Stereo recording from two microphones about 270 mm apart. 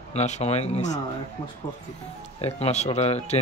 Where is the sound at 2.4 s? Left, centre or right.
Left.